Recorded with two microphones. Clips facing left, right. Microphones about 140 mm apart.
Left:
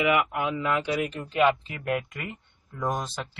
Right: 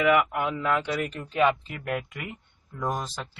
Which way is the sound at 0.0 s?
5° left (ahead or behind).